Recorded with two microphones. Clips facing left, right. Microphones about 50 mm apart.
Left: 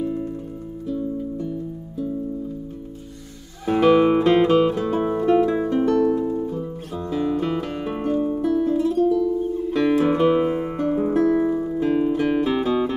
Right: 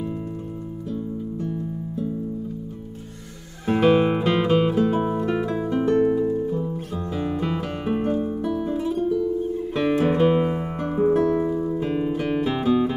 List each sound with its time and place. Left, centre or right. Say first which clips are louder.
3.6 s music: left 2 dB; centre
5.9 s music: even; centre
11.4 s music: left 2 dB; centre
11.8 s music: left 4 dB; centre